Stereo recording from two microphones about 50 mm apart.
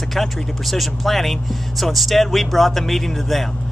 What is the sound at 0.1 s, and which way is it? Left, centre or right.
Speech, centre.